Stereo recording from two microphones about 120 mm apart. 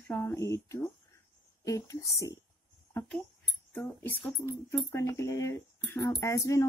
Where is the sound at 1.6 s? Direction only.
25° left (ahead or behind).